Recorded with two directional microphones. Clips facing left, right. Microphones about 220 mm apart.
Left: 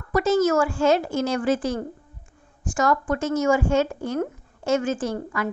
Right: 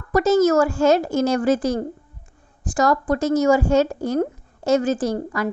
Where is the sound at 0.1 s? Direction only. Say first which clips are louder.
Right 4 dB; 40° right (ahead or behind).